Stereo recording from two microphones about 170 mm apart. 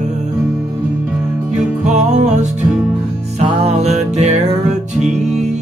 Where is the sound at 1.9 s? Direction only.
45° right (ahead or behind).